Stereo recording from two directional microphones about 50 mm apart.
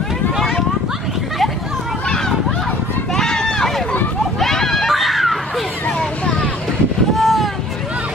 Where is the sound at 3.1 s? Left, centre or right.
Centre.